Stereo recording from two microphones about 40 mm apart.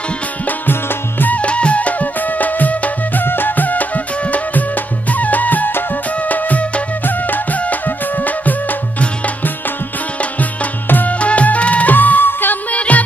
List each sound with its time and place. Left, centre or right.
0.5 s music: left
1.3 s music: left
3.3 s music: left
7.1 s music: left
10.9 s music: left
11.1 s music: left
12.7 s music: left